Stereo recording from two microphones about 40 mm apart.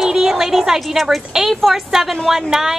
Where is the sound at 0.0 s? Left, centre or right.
Centre.